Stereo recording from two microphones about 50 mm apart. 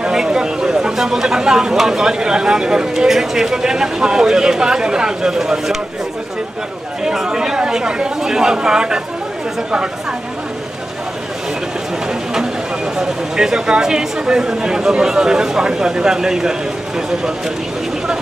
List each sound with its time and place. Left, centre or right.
0.0 s speech: centre
7.0 s speech: centre
12.9 s speech: centre